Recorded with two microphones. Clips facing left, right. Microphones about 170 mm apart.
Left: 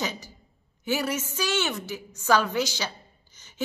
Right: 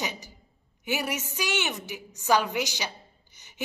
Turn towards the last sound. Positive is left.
turn(degrees=-15)  # may be behind; listen again after turning